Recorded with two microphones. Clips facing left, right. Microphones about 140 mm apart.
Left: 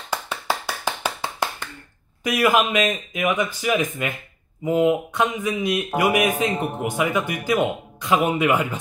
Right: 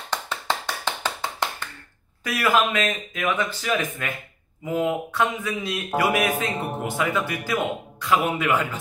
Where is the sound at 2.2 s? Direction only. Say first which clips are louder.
Left 3 dB; 15° left (ahead or behind).